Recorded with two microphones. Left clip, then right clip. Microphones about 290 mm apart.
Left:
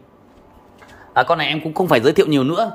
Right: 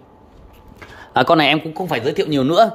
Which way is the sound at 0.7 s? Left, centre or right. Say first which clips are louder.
Even; right.